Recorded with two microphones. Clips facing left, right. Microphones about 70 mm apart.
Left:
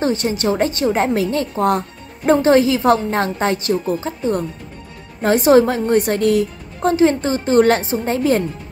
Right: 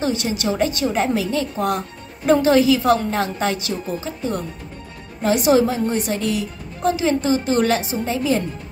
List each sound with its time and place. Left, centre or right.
0.0 s a woman's voice: left